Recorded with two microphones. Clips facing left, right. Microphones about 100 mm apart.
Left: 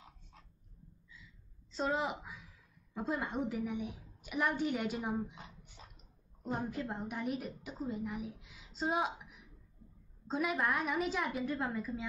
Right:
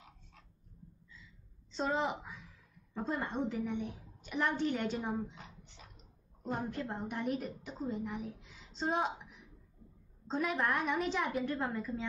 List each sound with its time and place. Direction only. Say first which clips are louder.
1.7 s a woman's voice: right 1 dB; centre (ahead or behind)
6.4 s a woman's voice: even; 5° left (ahead or behind)